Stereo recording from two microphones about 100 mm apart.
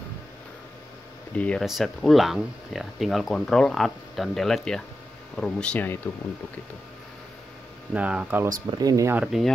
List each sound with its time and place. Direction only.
1.3 s speech: 15° left (ahead or behind)
1.6 s speech: centre (ahead or behind)
7.9 s speech: 15° right (ahead or behind)
8.7 s speech: 35° right (ahead or behind)
9.2 s speech: 5° right (ahead or behind)